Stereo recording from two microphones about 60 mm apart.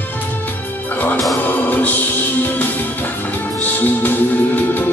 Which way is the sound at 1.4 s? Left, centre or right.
Left.